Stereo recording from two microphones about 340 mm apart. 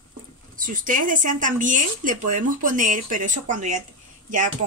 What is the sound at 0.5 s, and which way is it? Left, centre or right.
Speech, right.